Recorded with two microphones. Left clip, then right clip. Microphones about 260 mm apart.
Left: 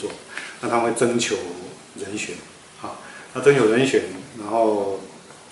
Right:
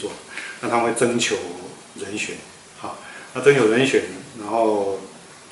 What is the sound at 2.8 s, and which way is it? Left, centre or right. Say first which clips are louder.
A man's voice: right 1 dB; centre.